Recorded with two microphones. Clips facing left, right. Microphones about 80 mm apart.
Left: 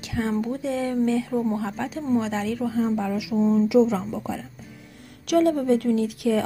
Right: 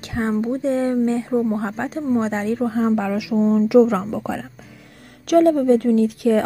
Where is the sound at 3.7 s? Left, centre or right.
Right.